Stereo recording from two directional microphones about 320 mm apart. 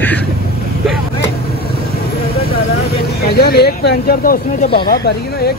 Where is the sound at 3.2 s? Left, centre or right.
Left.